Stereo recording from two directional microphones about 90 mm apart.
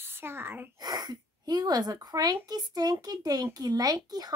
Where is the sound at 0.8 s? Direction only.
50° right (ahead or behind).